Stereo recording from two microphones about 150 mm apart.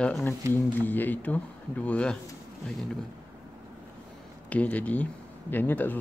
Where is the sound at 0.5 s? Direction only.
10° left (ahead or behind).